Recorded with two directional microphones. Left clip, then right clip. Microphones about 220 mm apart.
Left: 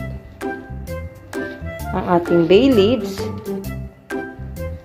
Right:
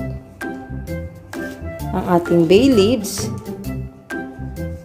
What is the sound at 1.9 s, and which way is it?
Music, 20° right (ahead or behind).